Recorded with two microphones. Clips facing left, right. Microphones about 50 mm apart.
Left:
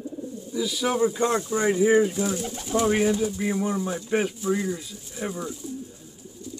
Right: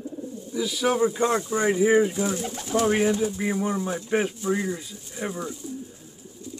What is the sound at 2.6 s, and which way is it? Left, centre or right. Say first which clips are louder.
Speech: even; right.